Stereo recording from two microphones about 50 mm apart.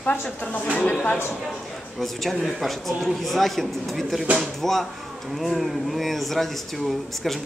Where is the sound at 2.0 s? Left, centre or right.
Centre.